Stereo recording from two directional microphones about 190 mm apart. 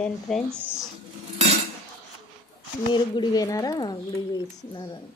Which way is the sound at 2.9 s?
25° left (ahead or behind).